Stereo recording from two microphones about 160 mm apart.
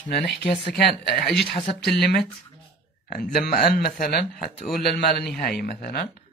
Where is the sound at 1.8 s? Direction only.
90° left.